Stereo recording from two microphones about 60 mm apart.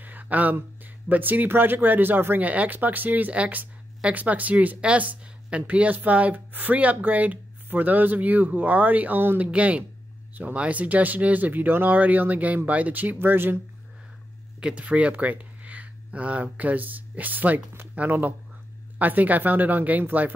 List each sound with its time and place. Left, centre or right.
0.0 s speech: right
9.4 s speech: right
14.6 s speech: centre